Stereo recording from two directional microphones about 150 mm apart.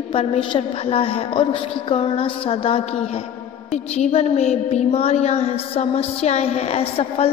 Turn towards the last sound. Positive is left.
turn(degrees=40)  # may be behind; listen again after turning